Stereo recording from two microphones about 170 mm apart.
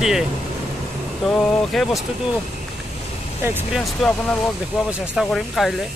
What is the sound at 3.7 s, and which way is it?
Speech, centre (ahead or behind).